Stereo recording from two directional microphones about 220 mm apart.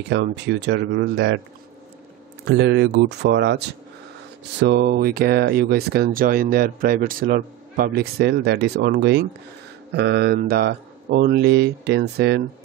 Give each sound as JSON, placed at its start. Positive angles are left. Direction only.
{"t": 0.1, "sound": "speech", "side_deg": -50}
{"t": 2.4, "sound": "speech", "side_deg": -50}